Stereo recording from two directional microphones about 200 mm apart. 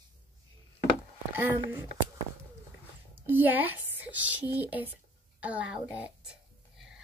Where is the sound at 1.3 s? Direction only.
10° right (ahead or behind).